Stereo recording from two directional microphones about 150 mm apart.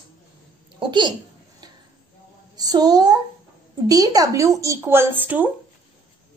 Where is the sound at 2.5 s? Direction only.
25° right (ahead or behind).